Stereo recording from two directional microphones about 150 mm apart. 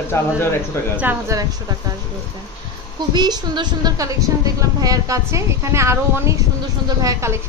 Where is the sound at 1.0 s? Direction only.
20° right (ahead or behind).